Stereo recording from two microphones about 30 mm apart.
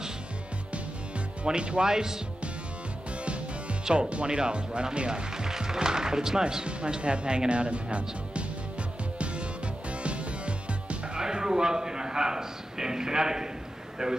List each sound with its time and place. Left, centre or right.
1.4 s speech: right
1.9 s speech: centre
4.1 s speech: right
5.5 s speech: centre
6.6 s speech: right
9.2 s music: right
11.1 s a man's voice: right